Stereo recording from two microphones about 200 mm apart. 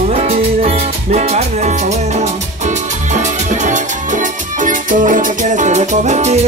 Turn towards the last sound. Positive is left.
turn(degrees=-35)  # may be behind; listen again after turning